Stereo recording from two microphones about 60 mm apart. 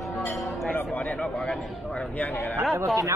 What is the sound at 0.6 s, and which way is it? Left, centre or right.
Speech, left.